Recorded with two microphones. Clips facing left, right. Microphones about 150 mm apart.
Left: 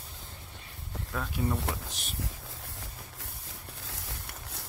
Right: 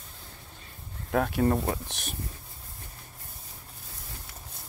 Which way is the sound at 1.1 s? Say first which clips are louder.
Right 8 dB; 65° right (ahead or behind).